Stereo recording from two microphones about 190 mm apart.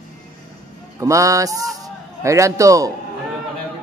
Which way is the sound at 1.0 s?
15° right (ahead or behind).